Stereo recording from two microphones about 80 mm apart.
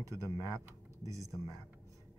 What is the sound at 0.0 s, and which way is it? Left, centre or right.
Speech, right.